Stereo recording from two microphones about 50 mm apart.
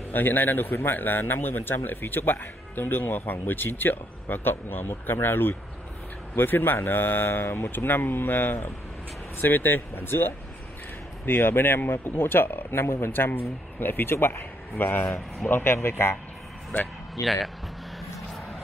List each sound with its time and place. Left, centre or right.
0.1 s speech: left
15.5 s speech: left
17.1 s speech: centre